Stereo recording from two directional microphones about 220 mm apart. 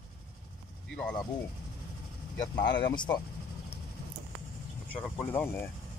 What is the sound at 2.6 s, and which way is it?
Speech, 50° left (ahead or behind).